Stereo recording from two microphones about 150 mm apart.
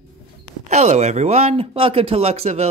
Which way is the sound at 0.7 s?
50° right (ahead or behind).